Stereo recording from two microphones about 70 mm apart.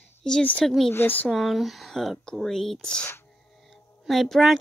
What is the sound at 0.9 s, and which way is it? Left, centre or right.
Speech, left.